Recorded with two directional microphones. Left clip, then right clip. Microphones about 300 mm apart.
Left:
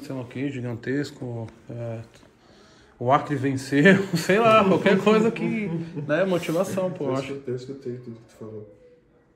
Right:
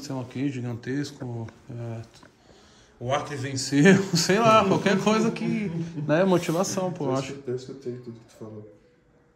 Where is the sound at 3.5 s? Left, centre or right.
Centre.